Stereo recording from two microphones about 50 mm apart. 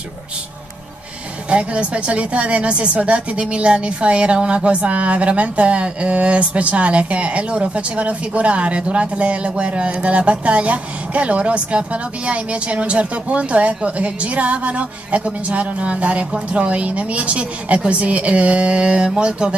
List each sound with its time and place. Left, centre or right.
1.5 s a woman's voice: right